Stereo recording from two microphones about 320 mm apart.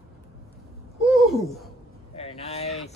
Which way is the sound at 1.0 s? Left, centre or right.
Centre.